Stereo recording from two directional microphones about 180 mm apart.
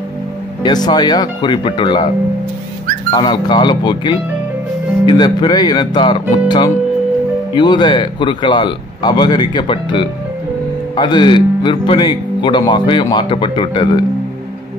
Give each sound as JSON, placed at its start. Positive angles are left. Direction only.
{"t": 0.7, "sound": "speech", "side_deg": 25}
{"t": 3.1, "sound": "speech", "side_deg": 25}
{"t": 7.5, "sound": "speech", "side_deg": 25}